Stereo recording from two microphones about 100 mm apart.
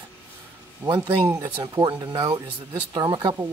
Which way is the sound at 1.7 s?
45° right (ahead or behind).